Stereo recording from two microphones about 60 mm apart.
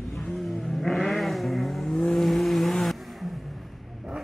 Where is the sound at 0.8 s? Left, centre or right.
Centre.